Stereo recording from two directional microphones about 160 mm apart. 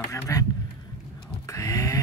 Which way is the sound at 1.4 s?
20° left (ahead or behind).